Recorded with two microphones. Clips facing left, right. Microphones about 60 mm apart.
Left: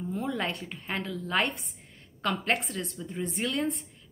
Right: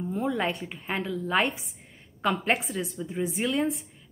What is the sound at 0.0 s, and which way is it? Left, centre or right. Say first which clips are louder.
A woman's voice: right 4 dB; centre.